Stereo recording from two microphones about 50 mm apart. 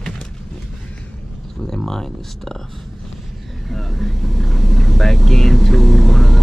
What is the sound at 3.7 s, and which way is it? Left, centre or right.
Vehicle, centre.